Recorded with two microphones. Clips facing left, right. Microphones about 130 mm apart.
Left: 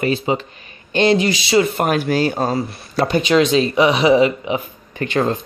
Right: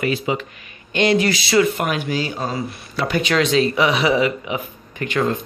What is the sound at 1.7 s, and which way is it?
Speech, 40° left (ahead or behind).